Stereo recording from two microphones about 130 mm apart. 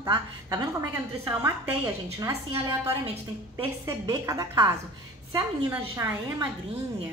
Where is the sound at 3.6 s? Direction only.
25° right (ahead or behind).